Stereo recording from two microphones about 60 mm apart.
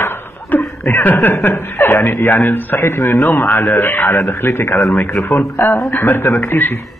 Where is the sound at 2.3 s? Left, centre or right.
Left.